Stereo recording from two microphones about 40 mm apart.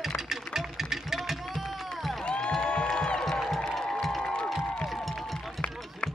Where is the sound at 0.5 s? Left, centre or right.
Centre.